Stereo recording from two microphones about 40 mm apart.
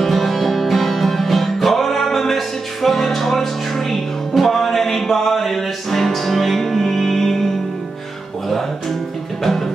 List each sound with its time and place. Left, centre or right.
0.0 s music: centre
9.4 s music: centre